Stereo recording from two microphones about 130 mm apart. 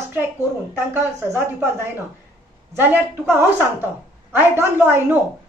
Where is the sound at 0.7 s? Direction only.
20° right (ahead or behind).